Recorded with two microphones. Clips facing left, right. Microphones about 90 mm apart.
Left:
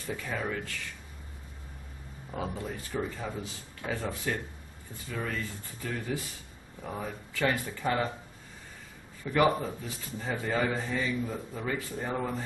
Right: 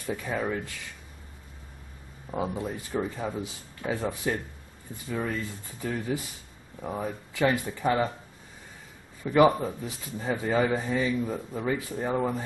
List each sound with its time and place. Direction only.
0.1 s speech: 15° right (ahead or behind)
2.3 s speech: 15° right (ahead or behind)
9.2 s speech: 15° right (ahead or behind)